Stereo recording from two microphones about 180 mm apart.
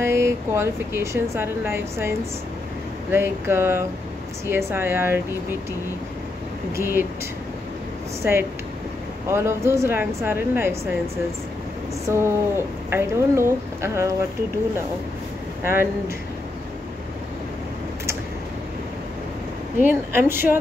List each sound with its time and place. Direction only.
0.0 s speech: 15° right (ahead or behind)
6.8 s speech: 15° right (ahead or behind)
8.2 s speech: 15° right (ahead or behind)
12.1 s speech: 15° right (ahead or behind)
15.6 s speech: 15° right (ahead or behind)
19.8 s speech: 10° right (ahead or behind)